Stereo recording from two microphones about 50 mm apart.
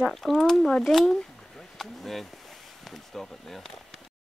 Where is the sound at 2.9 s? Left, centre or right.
Centre.